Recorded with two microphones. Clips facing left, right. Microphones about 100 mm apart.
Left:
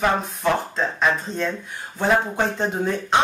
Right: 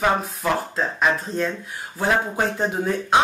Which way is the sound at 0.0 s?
5° right (ahead or behind).